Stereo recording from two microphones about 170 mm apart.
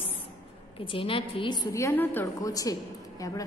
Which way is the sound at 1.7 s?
20° left (ahead or behind).